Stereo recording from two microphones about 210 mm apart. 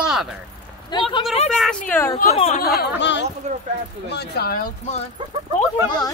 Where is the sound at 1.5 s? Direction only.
Centre (ahead or behind).